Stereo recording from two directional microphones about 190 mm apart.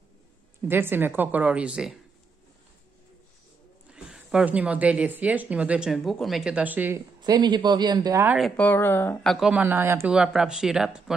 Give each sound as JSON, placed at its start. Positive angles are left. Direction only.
{"t": 0.7, "sound": "a woman's voice", "side_deg": -10}
{"t": 3.9, "sound": "a woman's voice", "side_deg": -5}
{"t": 7.2, "sound": "speech", "side_deg": -20}
{"t": 8.4, "sound": "speech", "side_deg": 5}